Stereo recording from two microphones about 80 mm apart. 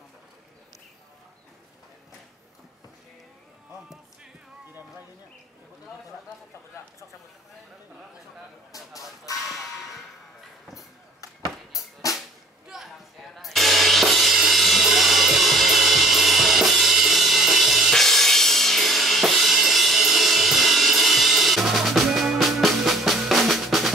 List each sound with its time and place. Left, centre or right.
8.7 s chicken: left
9.5 s whip: centre
12.2 s music: centre